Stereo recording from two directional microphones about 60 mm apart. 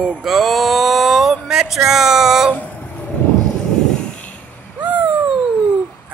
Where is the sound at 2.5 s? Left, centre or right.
Left.